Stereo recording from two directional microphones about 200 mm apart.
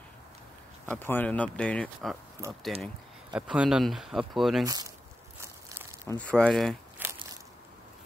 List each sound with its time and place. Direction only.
0.8 s speech: 10° left (ahead or behind)
4.6 s speech: 15° right (ahead or behind)
5.4 s a sound: 15° right (ahead or behind)
6.0 s speech: 5° left (ahead or behind)
7.0 s biting: 10° right (ahead or behind)